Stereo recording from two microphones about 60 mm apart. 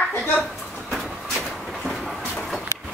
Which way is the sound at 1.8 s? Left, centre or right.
Centre.